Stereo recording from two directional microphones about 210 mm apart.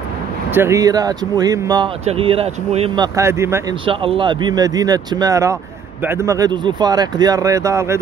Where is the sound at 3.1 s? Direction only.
15° right (ahead or behind).